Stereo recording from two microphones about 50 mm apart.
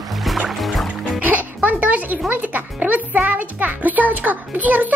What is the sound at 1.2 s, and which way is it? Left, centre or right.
Music, right.